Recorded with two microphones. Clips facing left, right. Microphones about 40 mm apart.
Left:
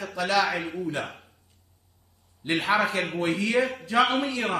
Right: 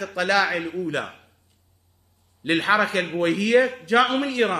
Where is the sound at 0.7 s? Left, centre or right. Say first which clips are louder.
Right 3 dB; right.